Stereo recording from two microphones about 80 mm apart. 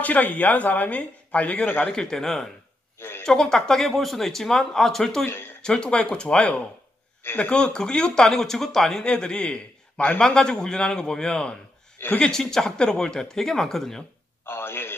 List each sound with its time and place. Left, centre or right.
0.0 s speech: centre
3.0 s a sound: left
3.3 s speech: centre
5.2 s speech: left
5.6 s speech: centre
14.4 s a sound: left